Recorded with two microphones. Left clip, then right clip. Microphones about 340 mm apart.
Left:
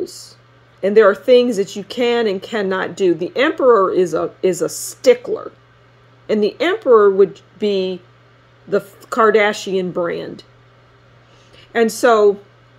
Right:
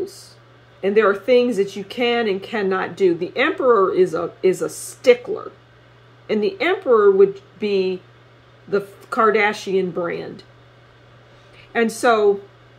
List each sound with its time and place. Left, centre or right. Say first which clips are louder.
0.8 s speech: left 5 dB; left
8.6 s speech: left 3 dB; left
11.7 s speech: left 4 dB; left